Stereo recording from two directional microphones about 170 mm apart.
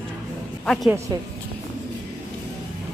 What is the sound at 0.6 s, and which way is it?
Speech, 5° left (ahead or behind).